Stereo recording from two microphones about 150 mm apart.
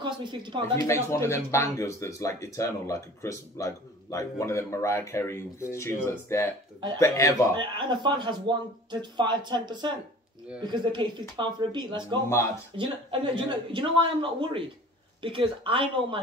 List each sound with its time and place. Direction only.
0.0 s a woman's voice: 30° right (ahead or behind)
0.7 s speech: 20° left (ahead or behind)
7.5 s speech: 30° right (ahead or behind)